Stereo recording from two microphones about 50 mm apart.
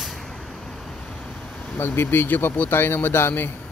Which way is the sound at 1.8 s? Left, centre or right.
Left.